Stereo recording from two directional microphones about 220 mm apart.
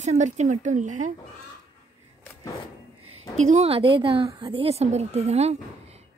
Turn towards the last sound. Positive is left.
turn(degrees=-30)  # may be behind; listen again after turning